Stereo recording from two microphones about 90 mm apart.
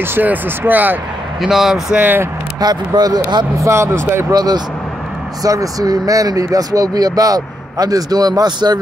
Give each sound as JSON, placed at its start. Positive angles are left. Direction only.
{"t": 0.0, "sound": "speech", "side_deg": -20}
{"t": 1.4, "sound": "speech", "side_deg": -5}
{"t": 2.0, "sound": "speech", "side_deg": -20}
{"t": 2.6, "sound": "speech", "side_deg": -50}
{"t": 3.5, "sound": "speech", "side_deg": -30}
{"t": 4.3, "sound": "speech", "side_deg": -45}